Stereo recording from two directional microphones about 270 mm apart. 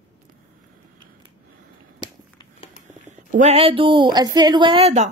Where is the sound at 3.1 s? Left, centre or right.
Right.